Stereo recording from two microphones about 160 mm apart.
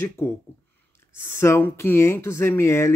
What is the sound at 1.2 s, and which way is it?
Speech, 15° left (ahead or behind).